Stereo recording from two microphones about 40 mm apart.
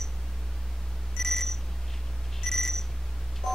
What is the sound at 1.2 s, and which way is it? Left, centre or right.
Alarm clock, centre.